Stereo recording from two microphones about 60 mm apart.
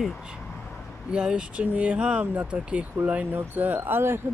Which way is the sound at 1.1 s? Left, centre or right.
Centre.